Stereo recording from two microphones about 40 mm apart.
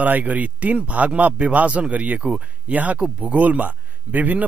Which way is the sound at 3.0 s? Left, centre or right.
Right.